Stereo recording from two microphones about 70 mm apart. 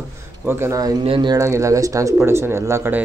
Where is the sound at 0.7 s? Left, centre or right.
Right.